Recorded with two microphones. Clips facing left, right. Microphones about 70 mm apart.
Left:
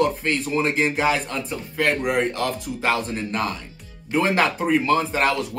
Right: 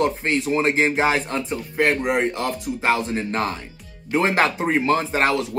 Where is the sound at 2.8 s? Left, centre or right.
Right.